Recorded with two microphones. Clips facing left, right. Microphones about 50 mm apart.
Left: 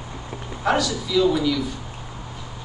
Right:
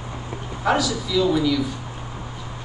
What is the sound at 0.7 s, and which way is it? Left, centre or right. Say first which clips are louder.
Speech: right 1 dB; centre.